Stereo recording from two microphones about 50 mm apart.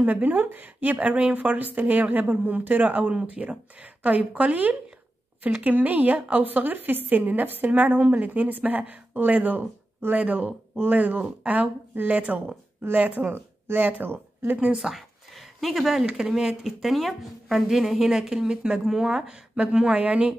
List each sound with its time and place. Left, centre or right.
0.0 s a woman's voice: right
13.3 s speech: right
13.8 s a woman's voice: right
15.0 s a sound: centre
16.2 s speech: centre